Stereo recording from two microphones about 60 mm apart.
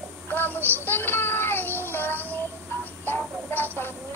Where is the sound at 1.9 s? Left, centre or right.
Left.